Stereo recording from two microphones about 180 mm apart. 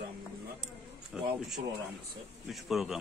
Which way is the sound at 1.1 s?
5° right (ahead or behind).